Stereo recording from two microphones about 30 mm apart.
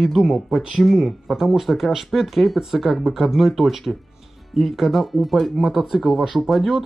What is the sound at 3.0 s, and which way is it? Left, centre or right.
Speech, centre.